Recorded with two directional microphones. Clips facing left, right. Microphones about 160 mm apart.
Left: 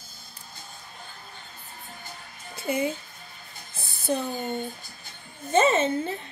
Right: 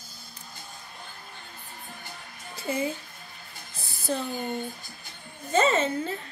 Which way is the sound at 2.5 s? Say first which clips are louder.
Left 2 dB; 20° left (ahead or behind).